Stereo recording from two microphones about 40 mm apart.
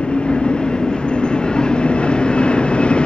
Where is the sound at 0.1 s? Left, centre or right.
Centre.